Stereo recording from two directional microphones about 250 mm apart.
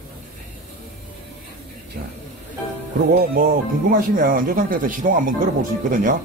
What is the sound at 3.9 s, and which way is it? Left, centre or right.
A man's voice, right.